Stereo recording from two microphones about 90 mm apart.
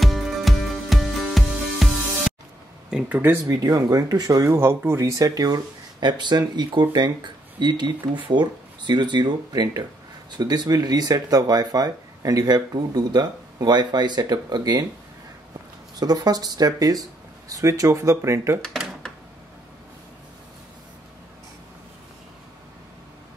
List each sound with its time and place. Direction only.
0.0 s music: centre (ahead or behind)
2.9 s speech: 10° right (ahead or behind)
3.4 s speech: 40° right (ahead or behind)
16.0 s speech: 45° right (ahead or behind)